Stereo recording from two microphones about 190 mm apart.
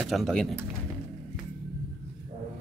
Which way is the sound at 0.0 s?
Centre (ahead or behind).